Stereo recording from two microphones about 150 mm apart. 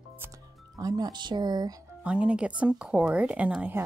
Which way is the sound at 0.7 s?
25° right (ahead or behind).